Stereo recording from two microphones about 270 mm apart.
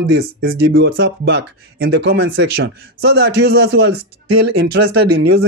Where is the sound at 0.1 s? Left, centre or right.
Right.